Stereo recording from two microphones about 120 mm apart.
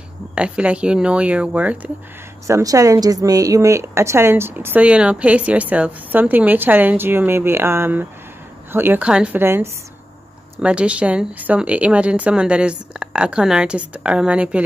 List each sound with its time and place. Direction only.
0.3 s speech: 10° right (ahead or behind)
2.4 s a woman's voice: 25° right (ahead or behind)
10.6 s speech: 10° right (ahead or behind)